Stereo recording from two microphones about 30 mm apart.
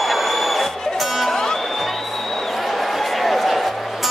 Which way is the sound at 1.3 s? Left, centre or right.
Centre.